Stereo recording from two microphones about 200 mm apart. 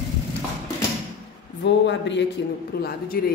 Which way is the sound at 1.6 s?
60° left (ahead or behind).